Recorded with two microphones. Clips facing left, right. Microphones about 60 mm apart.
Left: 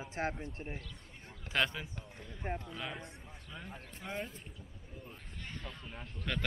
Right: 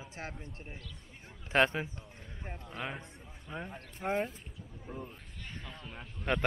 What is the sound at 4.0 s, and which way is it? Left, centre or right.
Speech, right.